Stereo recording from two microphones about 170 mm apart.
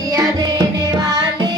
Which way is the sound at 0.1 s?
20° right (ahead or behind).